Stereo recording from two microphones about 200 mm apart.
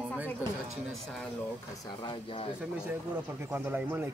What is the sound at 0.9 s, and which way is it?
Speech, centre (ahead or behind).